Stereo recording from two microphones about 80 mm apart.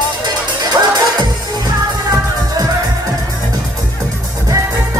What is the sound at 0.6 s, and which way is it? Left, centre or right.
Music, right.